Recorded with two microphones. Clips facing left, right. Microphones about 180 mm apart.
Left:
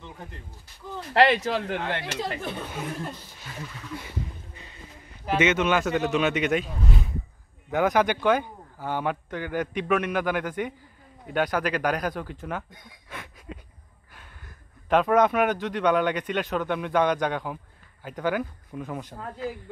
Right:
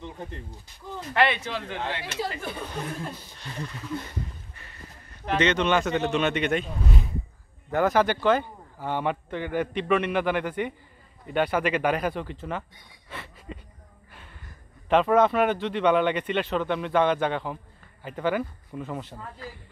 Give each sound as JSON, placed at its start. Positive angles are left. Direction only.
{"t": 1.1, "sound": "speech", "side_deg": 40}
{"t": 2.4, "sound": "speech", "side_deg": 0}
{"t": 5.1, "sound": "speech", "side_deg": 5}
{"t": 7.9, "sound": "speech", "side_deg": 15}
{"t": 13.1, "sound": "a sound", "side_deg": 10}
{"t": 14.9, "sound": "speech", "side_deg": 0}